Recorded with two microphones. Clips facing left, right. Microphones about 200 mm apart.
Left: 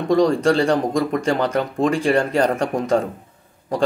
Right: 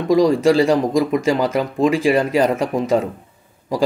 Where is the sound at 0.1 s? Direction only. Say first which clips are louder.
Right 2 dB; centre (ahead or behind).